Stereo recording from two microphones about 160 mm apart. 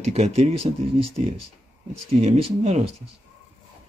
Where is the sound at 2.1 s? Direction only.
40° right (ahead or behind).